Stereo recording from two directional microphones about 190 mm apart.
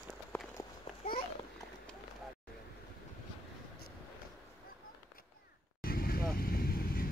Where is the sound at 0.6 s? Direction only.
15° left (ahead or behind).